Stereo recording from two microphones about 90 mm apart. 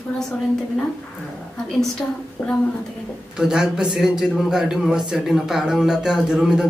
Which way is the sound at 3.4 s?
5° right (ahead or behind).